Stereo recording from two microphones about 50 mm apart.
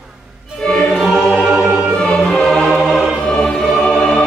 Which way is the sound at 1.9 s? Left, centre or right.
Centre.